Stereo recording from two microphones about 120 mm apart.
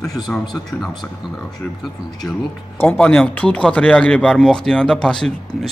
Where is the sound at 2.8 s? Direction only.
15° left (ahead or behind).